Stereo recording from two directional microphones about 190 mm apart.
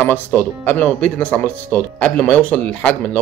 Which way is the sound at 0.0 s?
10° left (ahead or behind).